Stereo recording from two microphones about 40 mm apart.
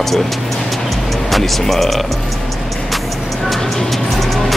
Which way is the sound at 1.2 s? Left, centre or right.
Centre.